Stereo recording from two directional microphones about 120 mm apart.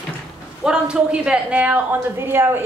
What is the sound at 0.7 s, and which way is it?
A woman's voice, 5° right (ahead or behind).